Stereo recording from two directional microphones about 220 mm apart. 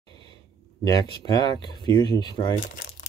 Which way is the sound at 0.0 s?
20° left (ahead or behind).